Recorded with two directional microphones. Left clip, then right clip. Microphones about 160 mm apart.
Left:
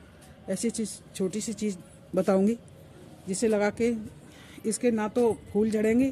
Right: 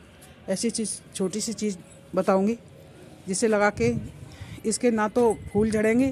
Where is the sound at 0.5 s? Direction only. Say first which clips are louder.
Right 3 dB; centre (ahead or behind).